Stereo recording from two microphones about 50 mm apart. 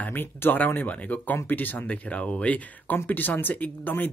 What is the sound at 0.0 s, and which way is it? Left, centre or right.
Speech, left.